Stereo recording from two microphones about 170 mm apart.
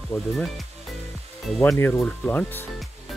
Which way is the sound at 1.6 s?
10° left (ahead or behind).